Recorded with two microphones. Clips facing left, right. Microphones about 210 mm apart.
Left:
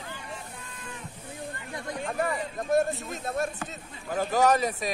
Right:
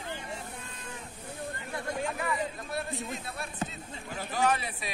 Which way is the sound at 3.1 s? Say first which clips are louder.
Left 8 dB; 45° left (ahead or behind).